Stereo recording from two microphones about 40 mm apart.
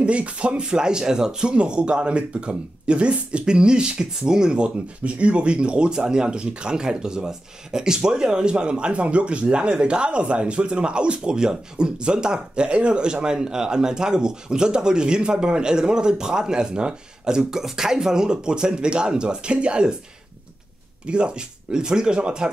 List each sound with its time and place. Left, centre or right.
0.0 s speech: right
21.1 s speech: right